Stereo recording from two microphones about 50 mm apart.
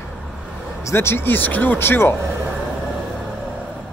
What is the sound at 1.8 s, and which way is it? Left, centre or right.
Speech, left.